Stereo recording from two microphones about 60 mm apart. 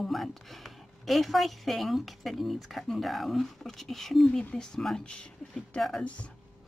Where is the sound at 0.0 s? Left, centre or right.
Centre.